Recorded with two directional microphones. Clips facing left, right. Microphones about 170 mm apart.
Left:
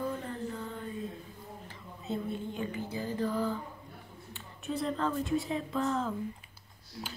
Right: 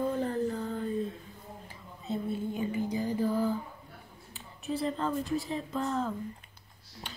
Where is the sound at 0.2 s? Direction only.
40° right (ahead or behind).